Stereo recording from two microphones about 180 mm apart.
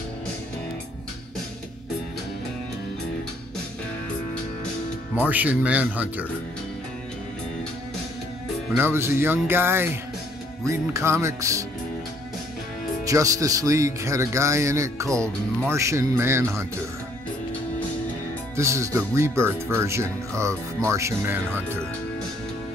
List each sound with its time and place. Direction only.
5.1 s speech: 10° right (ahead or behind)
8.7 s speech: 15° right (ahead or behind)
13.0 s speech: 20° right (ahead or behind)
18.6 s speech: 15° right (ahead or behind)